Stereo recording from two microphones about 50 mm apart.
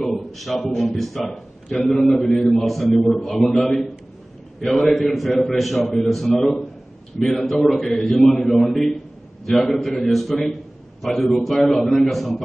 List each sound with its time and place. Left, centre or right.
0.0 s a man's voice: centre
5.0 s a man's voice: centre